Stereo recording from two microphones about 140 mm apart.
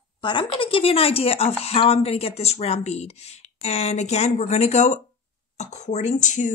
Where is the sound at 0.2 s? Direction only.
35° left (ahead or behind).